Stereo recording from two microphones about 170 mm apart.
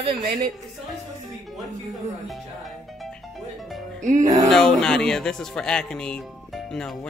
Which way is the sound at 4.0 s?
45° right (ahead or behind).